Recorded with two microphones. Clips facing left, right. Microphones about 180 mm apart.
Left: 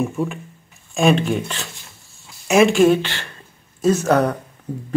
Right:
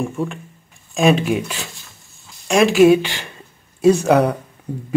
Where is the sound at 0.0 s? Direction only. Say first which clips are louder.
Left 1 dB; centre (ahead or behind).